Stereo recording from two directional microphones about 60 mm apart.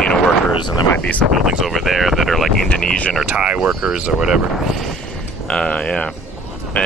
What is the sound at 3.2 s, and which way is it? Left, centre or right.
Speech, centre.